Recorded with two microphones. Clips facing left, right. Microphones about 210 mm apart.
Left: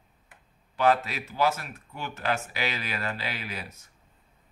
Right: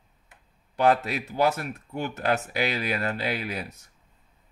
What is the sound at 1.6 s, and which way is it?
Speech, 50° right (ahead or behind).